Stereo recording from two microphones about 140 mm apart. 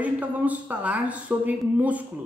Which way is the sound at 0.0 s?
10° right (ahead or behind).